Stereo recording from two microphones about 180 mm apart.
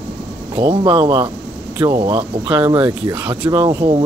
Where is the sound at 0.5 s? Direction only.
30° right (ahead or behind).